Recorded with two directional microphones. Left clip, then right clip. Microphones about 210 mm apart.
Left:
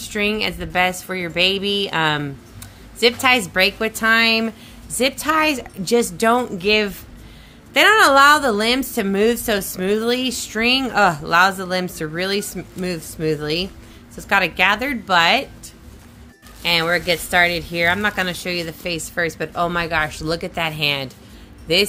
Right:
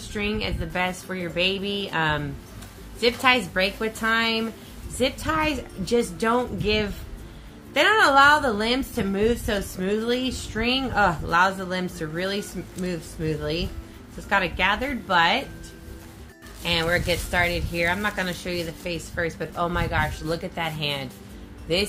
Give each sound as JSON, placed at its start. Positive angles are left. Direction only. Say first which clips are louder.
{"t": 0.1, "sound": "a woman's voice", "louder": "left 7 dB", "side_deg": 60}
{"t": 16.6, "sound": "a woman's voice", "louder": "left 5 dB", "side_deg": 60}